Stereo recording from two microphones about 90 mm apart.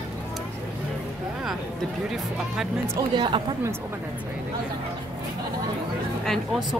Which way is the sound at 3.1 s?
65° right (ahead or behind).